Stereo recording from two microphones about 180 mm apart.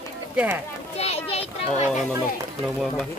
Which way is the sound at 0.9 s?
35° left (ahead or behind).